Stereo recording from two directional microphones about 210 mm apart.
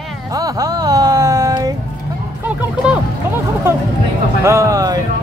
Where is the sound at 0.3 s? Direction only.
15° right (ahead or behind).